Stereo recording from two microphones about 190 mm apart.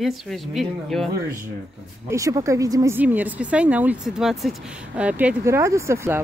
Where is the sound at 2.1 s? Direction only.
15° right (ahead or behind).